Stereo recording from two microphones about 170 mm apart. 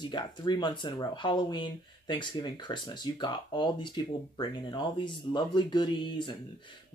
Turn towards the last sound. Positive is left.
turn(degrees=25)  # may be behind; listen again after turning